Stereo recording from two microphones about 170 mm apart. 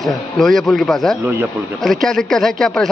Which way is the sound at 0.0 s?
Centre (ahead or behind).